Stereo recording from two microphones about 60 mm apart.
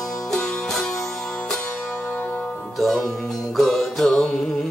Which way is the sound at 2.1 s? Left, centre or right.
Left.